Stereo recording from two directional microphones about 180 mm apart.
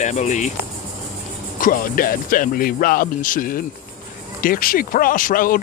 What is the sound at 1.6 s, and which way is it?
Speech, 50° left (ahead or behind).